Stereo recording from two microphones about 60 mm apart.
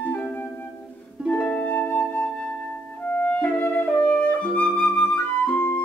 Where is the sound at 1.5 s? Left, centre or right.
Left.